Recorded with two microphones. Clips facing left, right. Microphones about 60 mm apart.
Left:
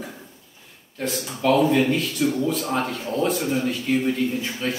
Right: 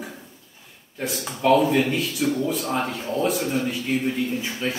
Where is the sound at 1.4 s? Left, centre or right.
Centre.